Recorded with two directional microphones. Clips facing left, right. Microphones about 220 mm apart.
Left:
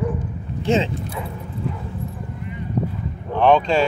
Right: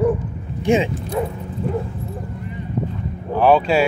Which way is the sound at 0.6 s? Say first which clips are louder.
Right 2 dB; 15° right (ahead or behind).